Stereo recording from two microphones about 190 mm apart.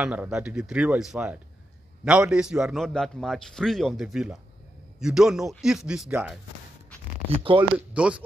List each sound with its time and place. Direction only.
0.0 s a man's voice: 5° right (ahead or behind)
7.2 s speech: 30° right (ahead or behind)
7.9 s speech: 5° right (ahead or behind)